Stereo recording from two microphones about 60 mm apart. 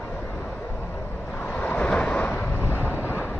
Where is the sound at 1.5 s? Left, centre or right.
Left.